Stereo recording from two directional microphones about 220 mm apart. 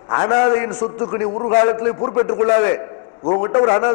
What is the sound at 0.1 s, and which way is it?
A man's voice, 20° left (ahead or behind).